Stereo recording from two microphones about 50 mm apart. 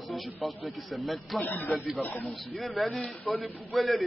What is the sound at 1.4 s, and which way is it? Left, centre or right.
Speech, left.